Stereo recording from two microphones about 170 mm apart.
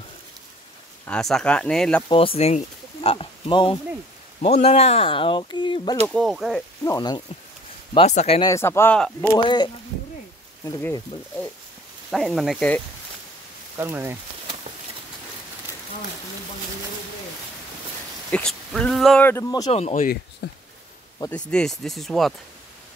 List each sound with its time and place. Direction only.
1.0 s speech: 5° left (ahead or behind)
2.0 s speech: 35° left (ahead or behind)
6.0 s speech: 5° left (ahead or behind)
6.8 s speech: 20° left (ahead or behind)
7.9 s speech: 35° left (ahead or behind)
8.4 s speech: 20° left (ahead or behind)
10.6 s speech: 15° left (ahead or behind)
12.1 s speech: centre (ahead or behind)
13.7 s a sound: 15° right (ahead or behind)
18.3 s speech: 5° left (ahead or behind)
19.2 s speech: 15° left (ahead or behind)
19.7 s speech: 40° left (ahead or behind)
20.4 s a sound: 75° left (ahead or behind)
21.5 s speech: 5° left (ahead or behind)